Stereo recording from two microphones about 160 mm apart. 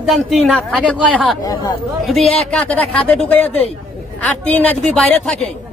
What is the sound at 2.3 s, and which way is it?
A woman's voice, 5° left (ahead or behind).